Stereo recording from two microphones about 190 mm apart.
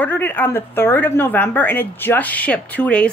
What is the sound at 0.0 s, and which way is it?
Speech, 10° left (ahead or behind).